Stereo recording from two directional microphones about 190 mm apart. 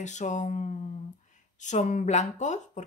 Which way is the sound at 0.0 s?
40° left (ahead or behind).